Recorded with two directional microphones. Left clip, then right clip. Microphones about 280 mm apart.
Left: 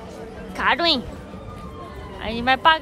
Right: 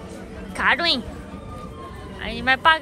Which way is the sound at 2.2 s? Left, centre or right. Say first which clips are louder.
Left 1 dB; centre.